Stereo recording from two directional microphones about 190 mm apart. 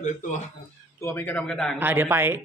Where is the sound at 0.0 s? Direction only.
40° left (ahead or behind).